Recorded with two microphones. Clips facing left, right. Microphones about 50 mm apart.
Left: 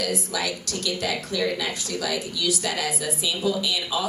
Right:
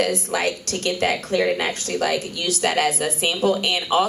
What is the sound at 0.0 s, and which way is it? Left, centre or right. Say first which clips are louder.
A woman's voice: right 6 dB; right.